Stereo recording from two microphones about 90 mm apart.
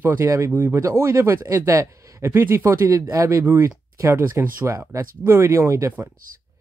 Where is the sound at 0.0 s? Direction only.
35° right (ahead or behind).